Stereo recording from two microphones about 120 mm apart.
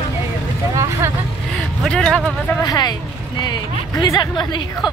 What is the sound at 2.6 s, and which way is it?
Speech, 35° left (ahead or behind).